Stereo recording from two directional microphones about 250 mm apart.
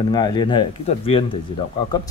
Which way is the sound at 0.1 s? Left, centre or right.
Centre.